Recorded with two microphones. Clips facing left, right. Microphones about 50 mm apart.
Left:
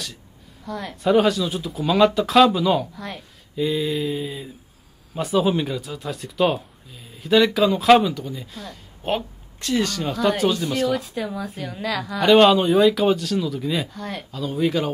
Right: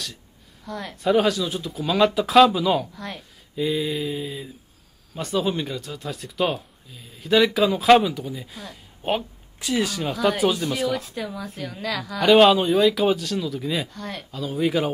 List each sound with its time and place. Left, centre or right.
0.7 s speech: centre